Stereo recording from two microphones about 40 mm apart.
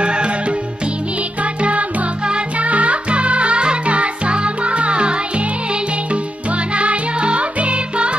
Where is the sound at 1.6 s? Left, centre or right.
Right.